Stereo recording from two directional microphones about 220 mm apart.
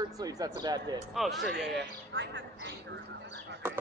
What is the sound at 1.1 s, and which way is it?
Speech, centre (ahead or behind).